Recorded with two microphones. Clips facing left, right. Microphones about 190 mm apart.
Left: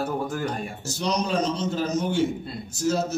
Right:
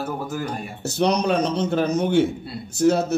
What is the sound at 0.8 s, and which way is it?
A man's voice, 60° right (ahead or behind).